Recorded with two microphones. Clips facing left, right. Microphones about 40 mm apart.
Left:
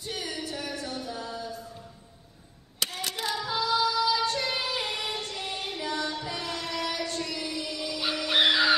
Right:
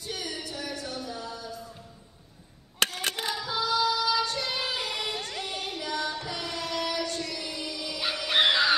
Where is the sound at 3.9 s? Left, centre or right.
Right.